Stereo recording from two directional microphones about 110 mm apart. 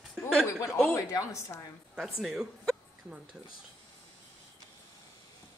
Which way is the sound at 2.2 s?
5° right (ahead or behind).